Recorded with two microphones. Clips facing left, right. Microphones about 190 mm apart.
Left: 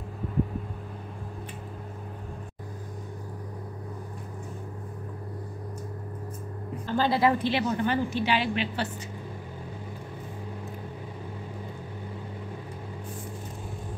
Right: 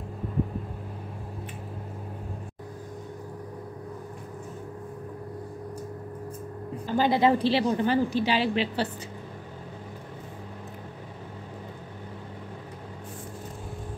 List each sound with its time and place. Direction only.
6.9 s a woman's voice: 15° right (ahead or behind)
7.3 s a woman's voice: 35° right (ahead or behind)